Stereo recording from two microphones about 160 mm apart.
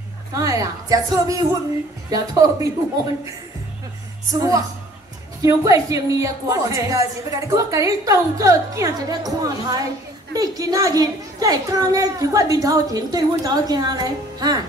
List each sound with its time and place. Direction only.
0.3 s a woman's voice: 20° right (ahead or behind)
4.3 s a woman's voice: 20° right (ahead or behind)